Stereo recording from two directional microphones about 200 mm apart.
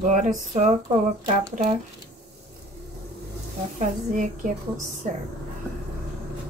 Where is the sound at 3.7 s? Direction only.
40° right (ahead or behind).